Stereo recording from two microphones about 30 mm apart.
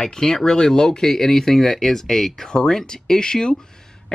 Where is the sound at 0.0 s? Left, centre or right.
Centre.